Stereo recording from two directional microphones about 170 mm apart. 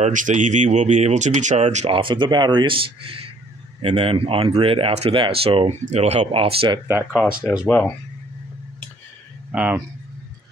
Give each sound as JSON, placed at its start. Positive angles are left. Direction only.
{"t": 0.0, "sound": "speech", "side_deg": -45}
{"t": 6.9, "sound": "speech", "side_deg": -15}
{"t": 7.6, "sound": "speech", "side_deg": 10}
{"t": 9.5, "sound": "speech", "side_deg": -10}